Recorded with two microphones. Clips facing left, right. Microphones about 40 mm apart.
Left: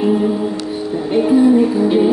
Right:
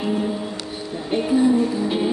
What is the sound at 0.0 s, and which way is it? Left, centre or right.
Music, centre.